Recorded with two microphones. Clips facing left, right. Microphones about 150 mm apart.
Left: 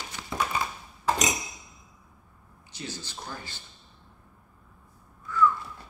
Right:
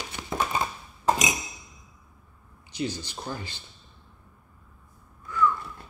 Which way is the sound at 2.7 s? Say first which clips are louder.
Right 8 dB; 15° right (ahead or behind).